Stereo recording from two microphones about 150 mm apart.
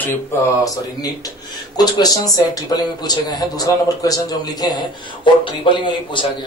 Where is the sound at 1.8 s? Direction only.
25° left (ahead or behind).